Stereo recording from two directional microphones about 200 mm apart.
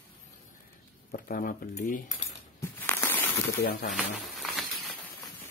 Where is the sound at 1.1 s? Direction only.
45° left (ahead or behind).